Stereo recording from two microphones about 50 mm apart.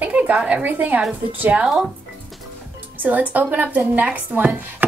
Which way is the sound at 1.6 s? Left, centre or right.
Centre.